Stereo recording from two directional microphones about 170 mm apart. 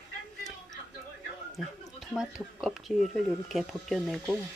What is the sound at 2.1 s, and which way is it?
Speech, centre (ahead or behind).